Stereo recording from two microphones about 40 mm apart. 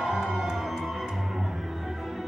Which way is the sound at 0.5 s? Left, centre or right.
Centre.